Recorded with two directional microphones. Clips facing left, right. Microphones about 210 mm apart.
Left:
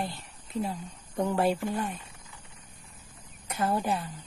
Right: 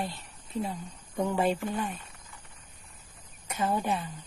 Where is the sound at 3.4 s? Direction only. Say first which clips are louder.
Left 1 dB; centre (ahead or behind).